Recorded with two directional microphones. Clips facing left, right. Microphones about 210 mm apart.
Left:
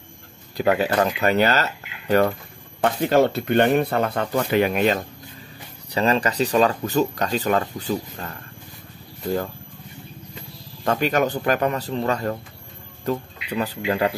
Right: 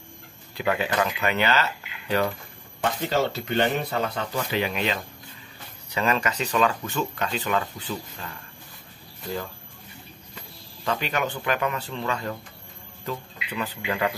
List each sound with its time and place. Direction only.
0.6 s speech: 40° left (ahead or behind)
5.9 s speech: 35° left (ahead or behind)
10.8 s speech: 45° left (ahead or behind); by 14.1 s 30° left (ahead or behind)